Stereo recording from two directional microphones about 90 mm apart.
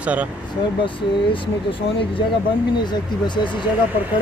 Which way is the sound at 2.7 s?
55° left (ahead or behind).